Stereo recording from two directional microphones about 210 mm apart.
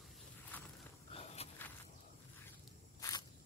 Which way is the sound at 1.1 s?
30° left (ahead or behind).